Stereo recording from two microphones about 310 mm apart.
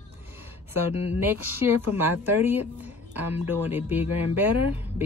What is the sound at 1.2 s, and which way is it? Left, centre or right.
A woman's voice, centre.